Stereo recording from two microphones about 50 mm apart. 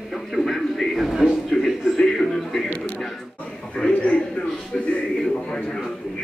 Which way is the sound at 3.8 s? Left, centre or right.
Left.